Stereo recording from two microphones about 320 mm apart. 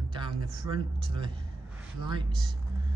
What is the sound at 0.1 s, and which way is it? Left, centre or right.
Speech, centre.